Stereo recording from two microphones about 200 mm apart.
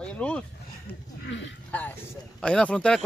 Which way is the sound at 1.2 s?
65° left (ahead or behind).